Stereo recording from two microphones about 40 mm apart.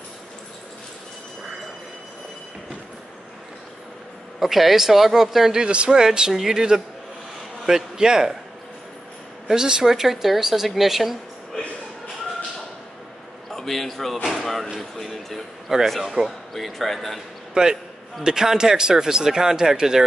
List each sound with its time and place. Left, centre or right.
4.4 s speech: centre
5.7 s speech: right
9.5 s speech: centre
11.5 s a sound: centre
13.5 s a man's voice: centre
15.7 s speech: centre
16.3 s speech: centre
17.6 s speech: centre